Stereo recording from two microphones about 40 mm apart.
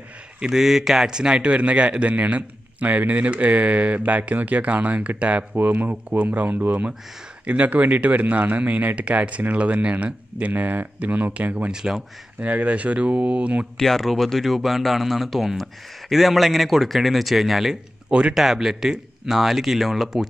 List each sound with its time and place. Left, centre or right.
0.4 s speech: centre
1.5 s a man's voice: right
5.6 s speech: right
5.9 s a man's voice: right
6.2 s speech: right
7.4 s a man's voice: right
11.7 s speech: centre
12.4 s a man's voice: right
13.7 s speech: centre